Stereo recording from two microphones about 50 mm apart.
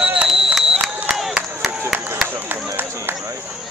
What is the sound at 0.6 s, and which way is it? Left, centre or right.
Crowd, centre.